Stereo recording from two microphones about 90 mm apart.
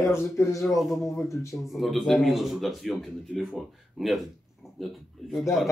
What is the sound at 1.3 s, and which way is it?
Speech, 35° left (ahead or behind).